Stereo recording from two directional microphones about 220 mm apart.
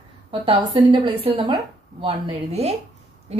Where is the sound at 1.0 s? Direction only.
25° right (ahead or behind).